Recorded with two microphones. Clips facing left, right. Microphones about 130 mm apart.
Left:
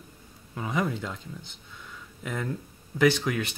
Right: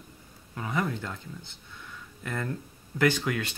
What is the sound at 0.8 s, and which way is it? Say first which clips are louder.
Speech: left 2 dB; 5° left (ahead or behind).